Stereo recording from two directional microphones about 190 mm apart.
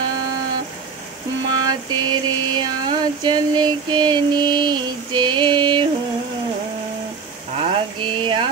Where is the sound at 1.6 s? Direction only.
25° right (ahead or behind).